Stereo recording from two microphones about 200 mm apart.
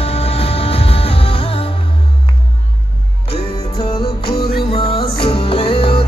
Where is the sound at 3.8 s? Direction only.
25° left (ahead or behind).